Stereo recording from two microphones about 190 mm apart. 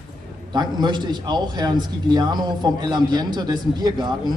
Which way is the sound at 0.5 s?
25° right (ahead or behind).